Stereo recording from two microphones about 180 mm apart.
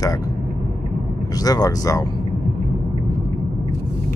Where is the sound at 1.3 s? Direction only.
20° left (ahead or behind).